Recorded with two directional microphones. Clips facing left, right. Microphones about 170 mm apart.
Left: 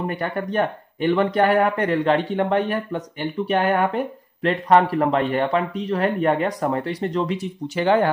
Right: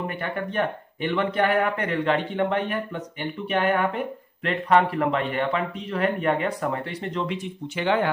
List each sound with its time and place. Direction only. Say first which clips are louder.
0.1 s speech: left 4 dB; 40° left (ahead or behind)